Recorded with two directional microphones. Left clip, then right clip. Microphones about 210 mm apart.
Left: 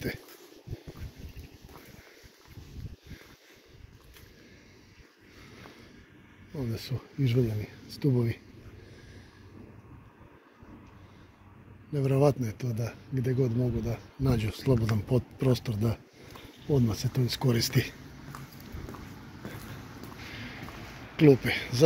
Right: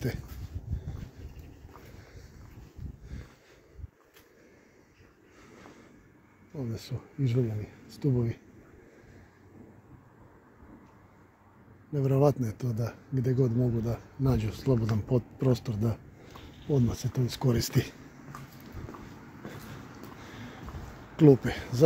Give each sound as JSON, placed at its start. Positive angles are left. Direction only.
{"t": 6.5, "sound": "speech", "side_deg": 5}
{"t": 11.9, "sound": "speech", "side_deg": -10}
{"t": 12.5, "sound": "speech", "side_deg": -25}
{"t": 14.2, "sound": "speech", "side_deg": -5}
{"t": 16.6, "sound": "speech", "side_deg": 15}
{"t": 16.9, "sound": "speech", "side_deg": 0}
{"t": 21.2, "sound": "speech", "side_deg": -15}